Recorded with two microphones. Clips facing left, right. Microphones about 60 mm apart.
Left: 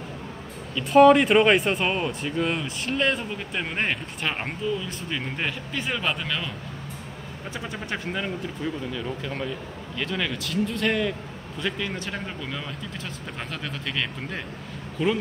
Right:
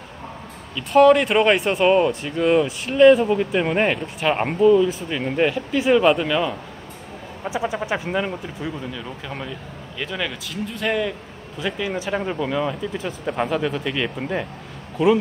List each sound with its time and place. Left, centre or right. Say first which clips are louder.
0.7 s speech: right 1 dB; centre